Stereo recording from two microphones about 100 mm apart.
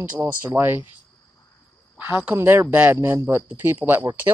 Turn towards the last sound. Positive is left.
turn(degrees=-25)  # may be behind; listen again after turning